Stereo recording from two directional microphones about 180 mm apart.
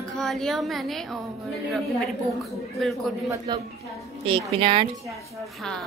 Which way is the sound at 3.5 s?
25° right (ahead or behind).